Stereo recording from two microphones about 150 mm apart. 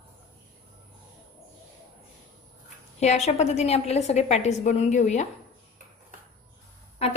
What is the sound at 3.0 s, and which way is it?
A woman's voice, 50° left (ahead or behind).